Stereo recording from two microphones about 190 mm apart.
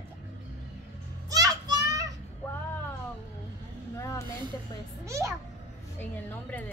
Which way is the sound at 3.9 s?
15° left (ahead or behind).